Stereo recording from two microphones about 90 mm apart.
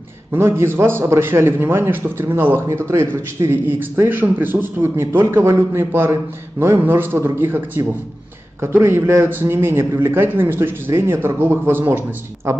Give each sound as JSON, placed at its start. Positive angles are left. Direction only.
{"t": 0.3, "sound": "a man's voice", "side_deg": -25}